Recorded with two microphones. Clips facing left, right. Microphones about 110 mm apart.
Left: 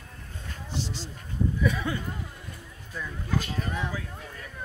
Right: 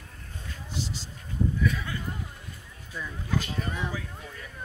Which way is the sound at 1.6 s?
25° left (ahead or behind).